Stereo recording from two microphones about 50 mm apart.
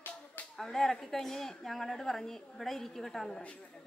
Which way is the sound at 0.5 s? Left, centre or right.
Centre.